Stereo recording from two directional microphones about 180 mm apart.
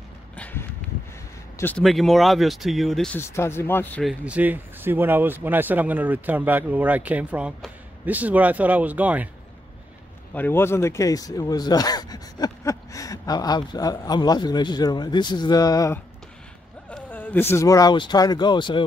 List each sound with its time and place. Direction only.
0.4 s a sound: 10° left (ahead or behind)
1.6 s speech: 5° left (ahead or behind)
3.2 s speech: 15° left (ahead or behind)
4.0 s speech: 5° right (ahead or behind)
10.3 s speech: 10° left (ahead or behind)